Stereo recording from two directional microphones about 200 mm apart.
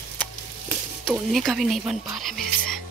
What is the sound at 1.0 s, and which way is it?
Speech, centre (ahead or behind).